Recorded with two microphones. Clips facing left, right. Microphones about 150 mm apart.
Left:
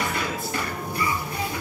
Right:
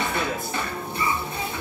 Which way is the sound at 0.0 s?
25° right (ahead or behind).